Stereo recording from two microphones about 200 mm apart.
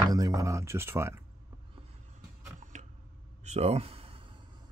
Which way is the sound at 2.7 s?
35° right (ahead or behind).